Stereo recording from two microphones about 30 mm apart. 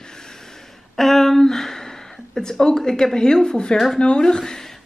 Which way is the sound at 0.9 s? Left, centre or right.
Centre.